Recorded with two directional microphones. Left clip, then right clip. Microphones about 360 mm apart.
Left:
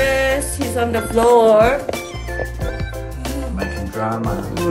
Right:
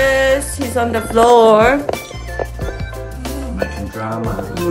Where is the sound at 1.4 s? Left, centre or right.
Right.